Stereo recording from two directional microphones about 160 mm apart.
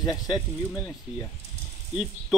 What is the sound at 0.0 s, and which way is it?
Speech, centre (ahead or behind).